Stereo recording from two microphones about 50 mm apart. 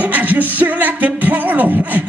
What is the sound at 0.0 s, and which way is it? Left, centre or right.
Music, right.